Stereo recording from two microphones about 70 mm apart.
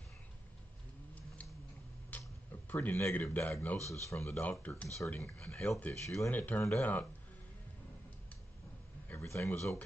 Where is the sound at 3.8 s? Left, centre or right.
Left.